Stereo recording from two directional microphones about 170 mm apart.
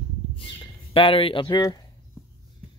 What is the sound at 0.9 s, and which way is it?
Speech, 30° left (ahead or behind).